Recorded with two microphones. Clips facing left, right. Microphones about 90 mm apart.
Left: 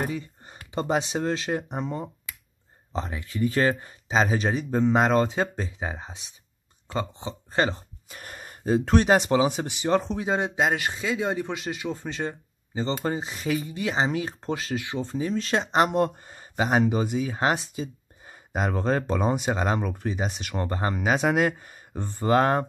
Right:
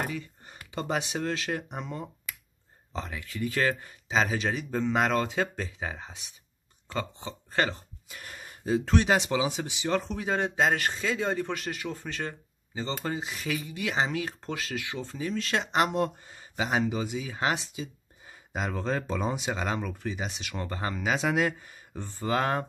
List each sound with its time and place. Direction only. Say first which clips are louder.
0.0 s speech: left 4 dB; 25° left (ahead or behind)
8.1 s speech: left 3 dB; 40° left (ahead or behind)
9.8 s speech: left 5 dB; 30° left (ahead or behind)
15.9 s speech: left 4 dB; 50° left (ahead or behind)
20.9 s speech: left 4 dB; 55° left (ahead or behind)